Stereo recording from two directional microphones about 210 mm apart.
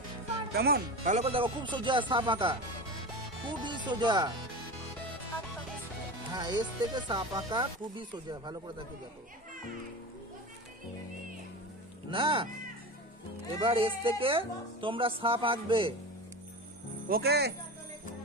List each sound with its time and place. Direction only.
0.5 s speech: 50° right (ahead or behind)
1.1 s speech: 30° right (ahead or behind)
6.3 s speech: 20° right (ahead or behind)
12.1 s speech: 25° right (ahead or behind)
13.6 s speech: 25° right (ahead or behind)
17.1 s speech: 50° right (ahead or behind)